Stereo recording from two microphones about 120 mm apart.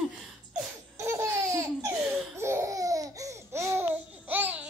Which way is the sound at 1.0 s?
25° right (ahead or behind).